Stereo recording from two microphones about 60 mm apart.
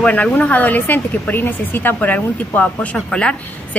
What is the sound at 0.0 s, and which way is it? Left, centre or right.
A woman's voice, left.